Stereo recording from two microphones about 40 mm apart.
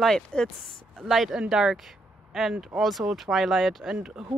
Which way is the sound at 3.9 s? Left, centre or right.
Right.